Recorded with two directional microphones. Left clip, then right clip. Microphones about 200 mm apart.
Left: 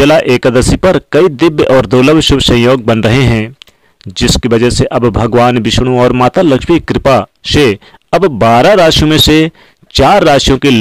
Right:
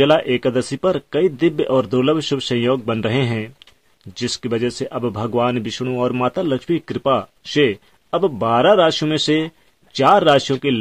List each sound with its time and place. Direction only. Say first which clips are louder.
0.0 s speech: left 8 dB; 45° left (ahead or behind)